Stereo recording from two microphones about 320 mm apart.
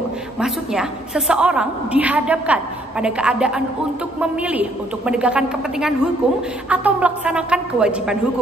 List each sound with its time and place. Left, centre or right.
0.4 s a woman's voice: centre